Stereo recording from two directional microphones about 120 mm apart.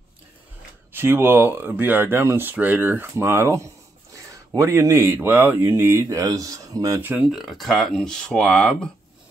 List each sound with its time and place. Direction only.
0.9 s speech: 20° right (ahead or behind)
7.0 s speech: 15° right (ahead or behind)
7.2 s speech: centre (ahead or behind)